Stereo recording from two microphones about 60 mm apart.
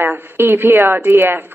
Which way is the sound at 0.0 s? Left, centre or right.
Right.